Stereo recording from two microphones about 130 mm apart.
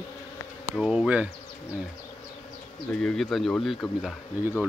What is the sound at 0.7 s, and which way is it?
Speech, 5° right (ahead or behind).